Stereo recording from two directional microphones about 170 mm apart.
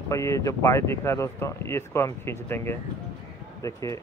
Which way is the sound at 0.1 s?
20° left (ahead or behind).